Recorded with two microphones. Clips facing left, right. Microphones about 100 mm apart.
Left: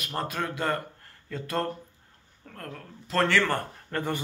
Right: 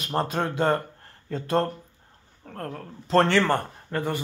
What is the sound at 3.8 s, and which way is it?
Speech, 10° right (ahead or behind).